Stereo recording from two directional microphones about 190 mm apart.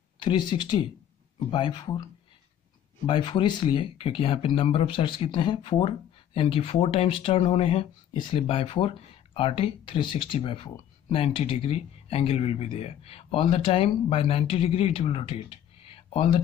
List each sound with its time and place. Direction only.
0.2 s speech: 25° left (ahead or behind)
3.1 s speech: 25° left (ahead or behind)